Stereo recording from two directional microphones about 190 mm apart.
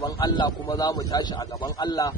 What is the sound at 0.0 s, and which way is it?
A man's voice, 25° left (ahead or behind).